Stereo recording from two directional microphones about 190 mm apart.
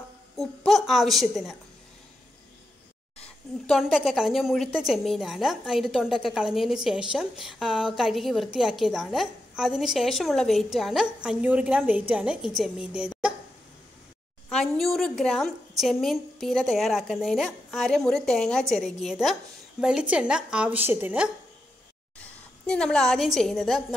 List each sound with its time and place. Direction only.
0.4 s a woman's voice: centre (ahead or behind)
3.2 s a woman's voice: centre (ahead or behind)
14.5 s a woman's voice: 5° left (ahead or behind)
22.2 s a woman's voice: 5° left (ahead or behind)